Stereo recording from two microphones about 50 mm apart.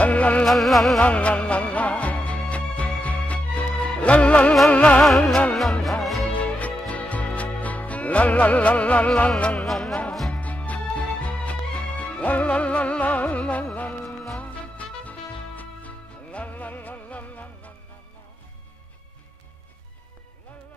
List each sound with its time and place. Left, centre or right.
0.0 s music: left
0.5 s music: centre
1.0 s music: left
5.6 s music: centre
6.2 s music: left
9.6 s music: centre
10.3 s music: left